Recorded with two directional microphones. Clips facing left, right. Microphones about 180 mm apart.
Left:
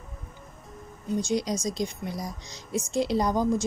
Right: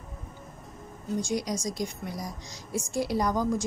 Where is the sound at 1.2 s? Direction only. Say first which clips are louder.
Left 3 dB; 25° left (ahead or behind).